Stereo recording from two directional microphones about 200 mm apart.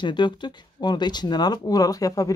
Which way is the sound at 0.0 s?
20° left (ahead or behind).